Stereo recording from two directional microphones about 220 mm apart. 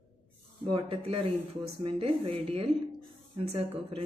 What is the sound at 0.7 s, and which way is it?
Speech, 25° right (ahead or behind).